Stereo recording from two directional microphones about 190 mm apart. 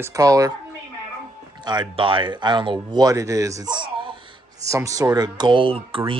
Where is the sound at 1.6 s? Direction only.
25° right (ahead or behind).